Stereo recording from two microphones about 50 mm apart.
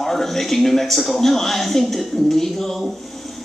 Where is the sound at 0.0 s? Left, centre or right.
Centre.